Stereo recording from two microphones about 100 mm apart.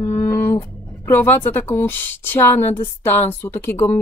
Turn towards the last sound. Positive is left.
turn(degrees=20)  # may be behind; listen again after turning